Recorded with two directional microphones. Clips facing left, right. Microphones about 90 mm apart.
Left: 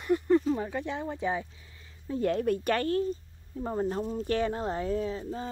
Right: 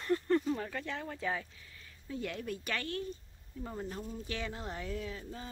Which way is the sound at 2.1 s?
40° left (ahead or behind).